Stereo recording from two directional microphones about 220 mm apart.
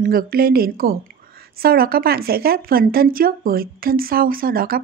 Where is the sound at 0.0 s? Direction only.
40° right (ahead or behind).